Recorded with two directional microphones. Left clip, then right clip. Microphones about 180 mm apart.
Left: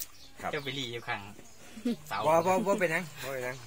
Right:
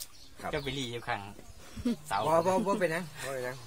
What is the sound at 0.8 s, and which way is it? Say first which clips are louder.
Speech: even; 60° right (ahead or behind).